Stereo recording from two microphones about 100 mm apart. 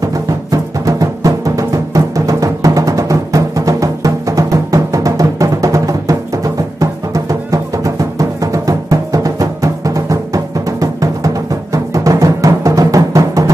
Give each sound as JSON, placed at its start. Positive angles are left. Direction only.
{"t": 0.0, "sound": "music", "side_deg": -35}